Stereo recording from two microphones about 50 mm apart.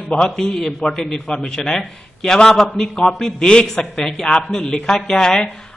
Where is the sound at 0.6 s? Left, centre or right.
Centre.